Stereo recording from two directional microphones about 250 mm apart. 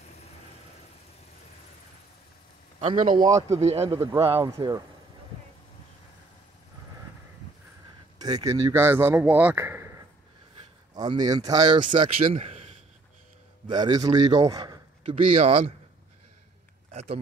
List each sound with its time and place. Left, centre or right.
2.8 s speech: right
4.4 s speech: centre
8.2 s speech: centre
11.0 s a man's voice: centre
16.9 s speech: right